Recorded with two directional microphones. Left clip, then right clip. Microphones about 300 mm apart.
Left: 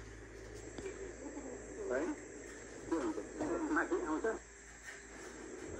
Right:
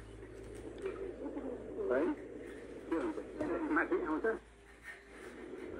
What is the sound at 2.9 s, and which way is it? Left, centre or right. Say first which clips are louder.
Radio: right 1 dB; centre.